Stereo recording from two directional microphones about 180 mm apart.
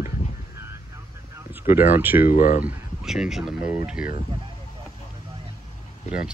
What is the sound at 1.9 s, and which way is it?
Speech, 10° right (ahead or behind).